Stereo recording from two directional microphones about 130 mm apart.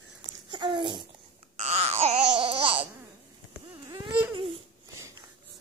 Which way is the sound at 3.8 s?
30° right (ahead or behind).